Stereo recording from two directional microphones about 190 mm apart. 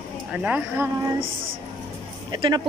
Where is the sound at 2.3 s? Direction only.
20° right (ahead or behind).